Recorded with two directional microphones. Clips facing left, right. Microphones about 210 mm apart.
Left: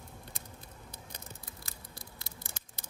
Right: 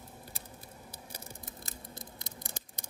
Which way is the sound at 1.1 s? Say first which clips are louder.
Right 2 dB; 20° right (ahead or behind).